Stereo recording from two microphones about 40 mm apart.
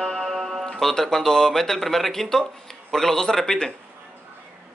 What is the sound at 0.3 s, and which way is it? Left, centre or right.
Tick-tock, centre.